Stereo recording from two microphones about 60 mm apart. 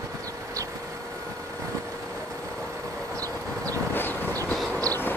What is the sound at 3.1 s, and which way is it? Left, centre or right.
Vehicle, right.